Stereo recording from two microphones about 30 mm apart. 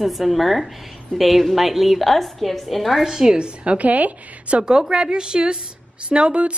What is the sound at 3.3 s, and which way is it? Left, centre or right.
Speech, right.